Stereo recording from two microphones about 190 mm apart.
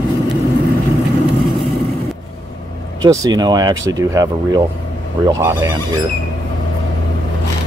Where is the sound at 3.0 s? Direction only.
20° right (ahead or behind).